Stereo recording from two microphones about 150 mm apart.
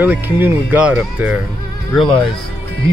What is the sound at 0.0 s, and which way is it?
Speech, 10° right (ahead or behind).